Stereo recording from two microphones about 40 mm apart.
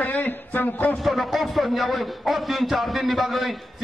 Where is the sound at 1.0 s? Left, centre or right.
Centre.